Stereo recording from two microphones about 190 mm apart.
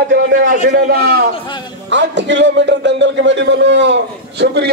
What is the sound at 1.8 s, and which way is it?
A man's voice, 70° right (ahead or behind).